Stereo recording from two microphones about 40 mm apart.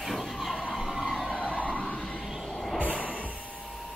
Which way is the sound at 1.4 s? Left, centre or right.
Right.